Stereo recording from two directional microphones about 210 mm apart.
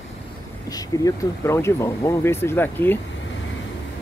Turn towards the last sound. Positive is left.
turn(degrees=10)  # may be behind; listen again after turning